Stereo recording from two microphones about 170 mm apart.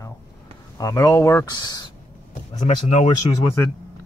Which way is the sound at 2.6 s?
40° left (ahead or behind).